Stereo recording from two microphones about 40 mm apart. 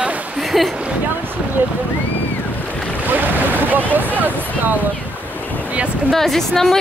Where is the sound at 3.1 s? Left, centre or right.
Right.